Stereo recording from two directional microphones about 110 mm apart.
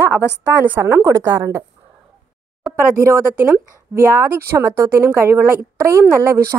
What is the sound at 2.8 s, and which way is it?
Speech, 25° right (ahead or behind).